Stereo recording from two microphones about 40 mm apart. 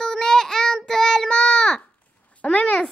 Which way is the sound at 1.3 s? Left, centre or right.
Left.